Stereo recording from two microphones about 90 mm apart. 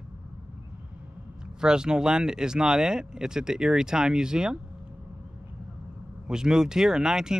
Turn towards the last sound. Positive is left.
turn(degrees=-5)  # may be behind; listen again after turning